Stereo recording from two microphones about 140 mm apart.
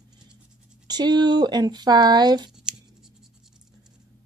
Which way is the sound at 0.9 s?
30° right (ahead or behind).